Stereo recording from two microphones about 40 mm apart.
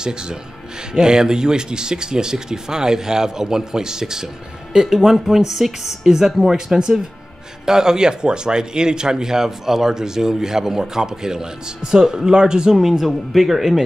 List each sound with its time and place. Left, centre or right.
0.0 s speech: centre
12.7 s speech: centre